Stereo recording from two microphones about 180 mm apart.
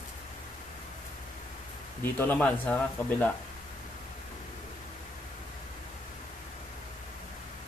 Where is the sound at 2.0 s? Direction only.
10° left (ahead or behind).